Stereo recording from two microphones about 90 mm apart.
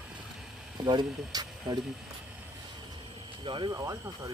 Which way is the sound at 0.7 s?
55° right (ahead or behind).